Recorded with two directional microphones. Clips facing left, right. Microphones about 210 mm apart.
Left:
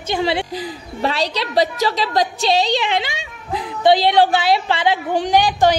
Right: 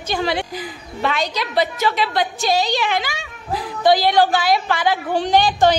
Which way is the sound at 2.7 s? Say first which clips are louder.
Left 1 dB; 20° left (ahead or behind).